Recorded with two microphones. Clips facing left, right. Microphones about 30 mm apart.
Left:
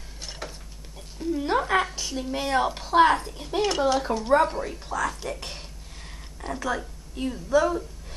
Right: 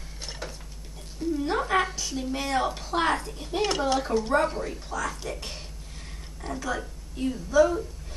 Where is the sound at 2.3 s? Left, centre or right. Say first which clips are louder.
Left 3 dB; centre.